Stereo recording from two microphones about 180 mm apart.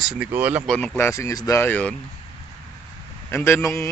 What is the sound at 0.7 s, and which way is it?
Speech, 5° left (ahead or behind).